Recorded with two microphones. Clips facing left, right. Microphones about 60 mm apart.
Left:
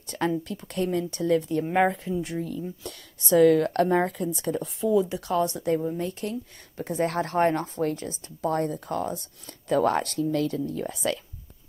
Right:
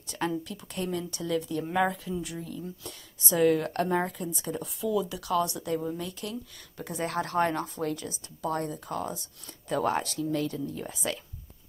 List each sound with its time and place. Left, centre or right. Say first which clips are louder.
0.1 s speech: left 4 dB; left
4.7 s speech: left 6 dB; left